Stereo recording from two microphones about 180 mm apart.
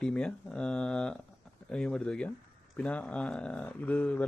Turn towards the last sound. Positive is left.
turn(degrees=10)  # may be behind; listen again after turning